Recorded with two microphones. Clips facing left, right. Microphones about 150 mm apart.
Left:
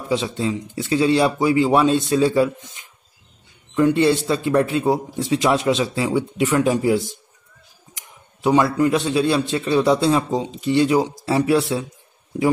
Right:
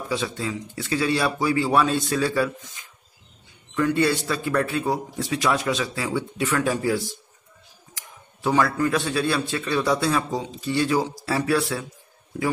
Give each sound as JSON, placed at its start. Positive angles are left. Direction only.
{"t": 0.1, "sound": "a man's voice", "side_deg": 25}